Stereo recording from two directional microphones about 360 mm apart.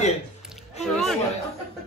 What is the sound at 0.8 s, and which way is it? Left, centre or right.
Speech, centre.